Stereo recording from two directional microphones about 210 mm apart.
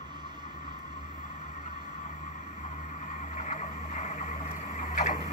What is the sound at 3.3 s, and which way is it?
Vehicle, 35° left (ahead or behind).